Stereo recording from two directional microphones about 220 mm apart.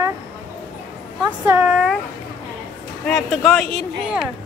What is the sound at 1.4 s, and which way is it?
Speech, 10° right (ahead or behind).